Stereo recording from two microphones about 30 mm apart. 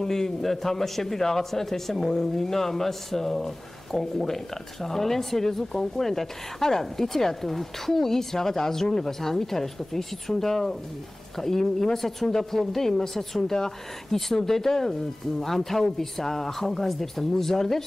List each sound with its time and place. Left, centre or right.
0.0 s a woman's voice: centre